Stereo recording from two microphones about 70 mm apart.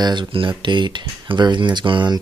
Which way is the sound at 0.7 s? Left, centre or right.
Right.